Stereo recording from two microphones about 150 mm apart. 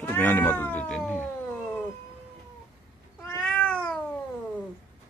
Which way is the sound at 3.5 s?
5° left (ahead or behind).